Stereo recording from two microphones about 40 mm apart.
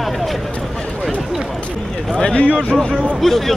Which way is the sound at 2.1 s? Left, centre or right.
Left.